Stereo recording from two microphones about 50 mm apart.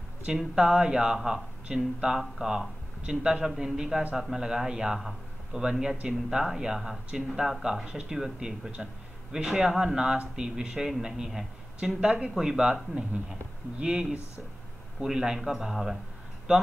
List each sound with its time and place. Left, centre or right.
0.6 s a man's voice: centre